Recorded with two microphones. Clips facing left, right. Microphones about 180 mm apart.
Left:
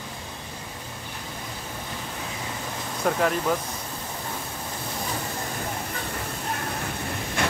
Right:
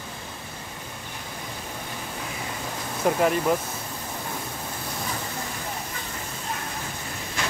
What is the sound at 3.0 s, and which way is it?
Speech, 5° right (ahead or behind).